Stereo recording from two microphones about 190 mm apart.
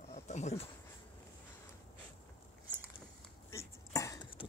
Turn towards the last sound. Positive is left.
turn(degrees=25)  # may be behind; listen again after turning